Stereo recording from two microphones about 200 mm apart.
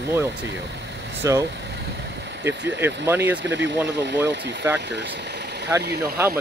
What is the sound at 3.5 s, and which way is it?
Speech, 60° right (ahead or behind).